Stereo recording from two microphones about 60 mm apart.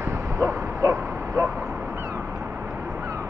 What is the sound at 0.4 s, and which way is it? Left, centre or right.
Bow-wow, right.